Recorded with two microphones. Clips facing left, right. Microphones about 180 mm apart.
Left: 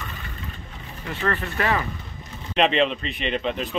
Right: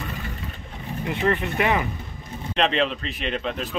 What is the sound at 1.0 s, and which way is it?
Speech, 20° right (ahead or behind).